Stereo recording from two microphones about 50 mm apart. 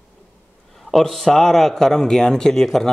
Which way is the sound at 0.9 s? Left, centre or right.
Centre.